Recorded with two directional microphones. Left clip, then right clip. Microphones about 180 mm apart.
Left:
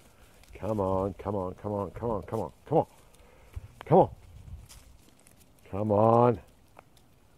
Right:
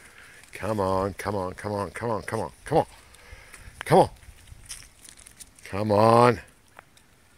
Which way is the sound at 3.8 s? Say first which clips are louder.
Right 3 dB; 15° right (ahead or behind).